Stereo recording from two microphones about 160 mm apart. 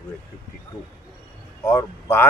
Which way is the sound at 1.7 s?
15° left (ahead or behind).